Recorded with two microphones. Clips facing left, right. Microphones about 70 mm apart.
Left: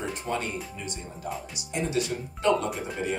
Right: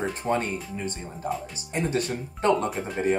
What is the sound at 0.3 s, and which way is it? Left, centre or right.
Speech, right.